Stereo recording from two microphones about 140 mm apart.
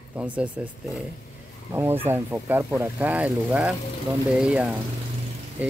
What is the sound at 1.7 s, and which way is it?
Speech, 15° right (ahead or behind).